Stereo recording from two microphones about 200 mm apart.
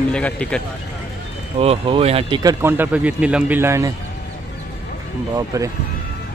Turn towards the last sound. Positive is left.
turn(degrees=-15)  # may be behind; listen again after turning